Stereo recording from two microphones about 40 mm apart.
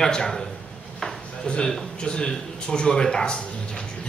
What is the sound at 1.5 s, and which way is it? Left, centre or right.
A man's voice, left.